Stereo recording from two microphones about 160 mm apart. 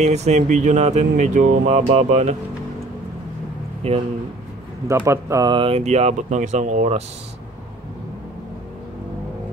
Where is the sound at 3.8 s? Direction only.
40° right (ahead or behind).